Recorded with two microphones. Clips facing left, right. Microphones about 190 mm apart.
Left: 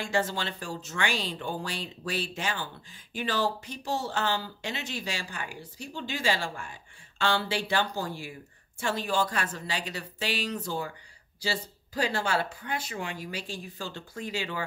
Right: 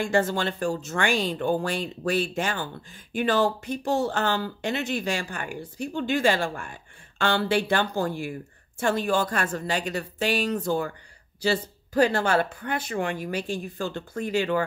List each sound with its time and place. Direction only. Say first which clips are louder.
0.0 s speech: right 6 dB; 50° right (ahead or behind)